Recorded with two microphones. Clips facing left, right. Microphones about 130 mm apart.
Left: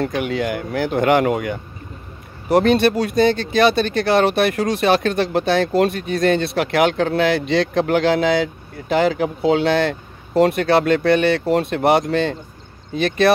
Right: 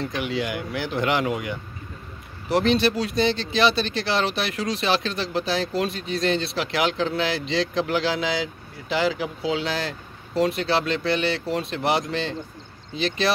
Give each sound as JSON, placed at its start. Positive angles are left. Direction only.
{"t": 0.0, "sound": "speech", "side_deg": 50}